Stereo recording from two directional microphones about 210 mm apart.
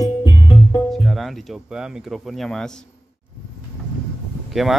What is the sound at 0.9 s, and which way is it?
Speech, centre (ahead or behind).